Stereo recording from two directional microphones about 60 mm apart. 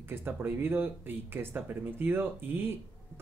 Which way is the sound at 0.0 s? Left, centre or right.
Right.